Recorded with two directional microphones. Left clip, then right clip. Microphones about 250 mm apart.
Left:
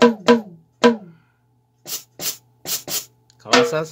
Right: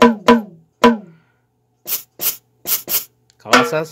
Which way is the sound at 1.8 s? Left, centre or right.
Centre.